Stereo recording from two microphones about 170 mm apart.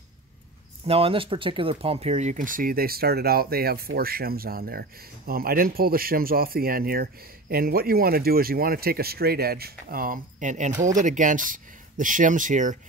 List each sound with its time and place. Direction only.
0.8 s speech: 35° right (ahead or behind)
10.7 s speech: 20° right (ahead or behind)
11.0 s speech: 50° right (ahead or behind)